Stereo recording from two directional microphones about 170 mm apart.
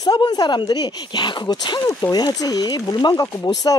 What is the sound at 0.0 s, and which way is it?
Speech, 25° left (ahead or behind).